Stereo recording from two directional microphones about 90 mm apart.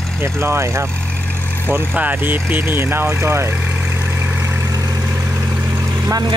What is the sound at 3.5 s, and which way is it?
Vehicle, 20° right (ahead or behind).